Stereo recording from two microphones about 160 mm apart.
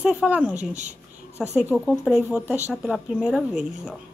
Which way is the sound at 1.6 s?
5° right (ahead or behind).